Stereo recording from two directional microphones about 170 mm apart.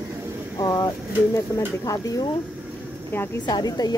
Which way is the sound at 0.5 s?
20° left (ahead or behind).